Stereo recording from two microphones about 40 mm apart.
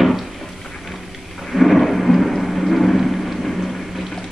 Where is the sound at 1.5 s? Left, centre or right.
Centre.